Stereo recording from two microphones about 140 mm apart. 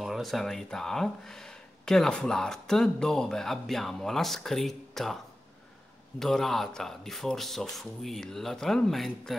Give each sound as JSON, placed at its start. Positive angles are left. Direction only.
{"t": 0.0, "sound": "speech", "side_deg": 0}